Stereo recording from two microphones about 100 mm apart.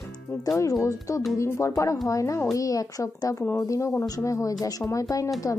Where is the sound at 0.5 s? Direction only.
35° left (ahead or behind).